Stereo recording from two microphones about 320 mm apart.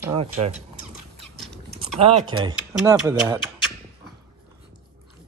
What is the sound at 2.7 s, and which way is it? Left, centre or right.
Speech, centre.